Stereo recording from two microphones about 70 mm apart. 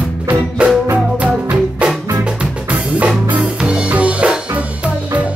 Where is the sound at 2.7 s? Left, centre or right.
Centre.